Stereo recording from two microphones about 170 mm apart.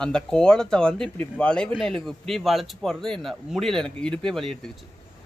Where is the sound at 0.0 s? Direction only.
5° left (ahead or behind).